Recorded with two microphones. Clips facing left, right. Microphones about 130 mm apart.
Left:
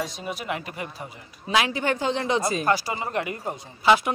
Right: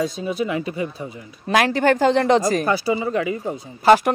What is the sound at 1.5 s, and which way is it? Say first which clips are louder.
Speech: right 5 dB; 50° right (ahead or behind).